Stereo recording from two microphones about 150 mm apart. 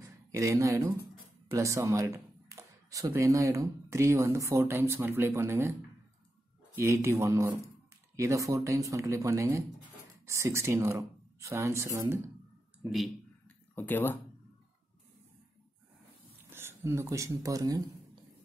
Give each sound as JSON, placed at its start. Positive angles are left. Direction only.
{"t": 0.0, "sound": "speech", "side_deg": -20}
{"t": 6.7, "sound": "speech", "side_deg": -20}
{"t": 13.7, "sound": "speech", "side_deg": 15}
{"t": 16.4, "sound": "speech", "side_deg": -15}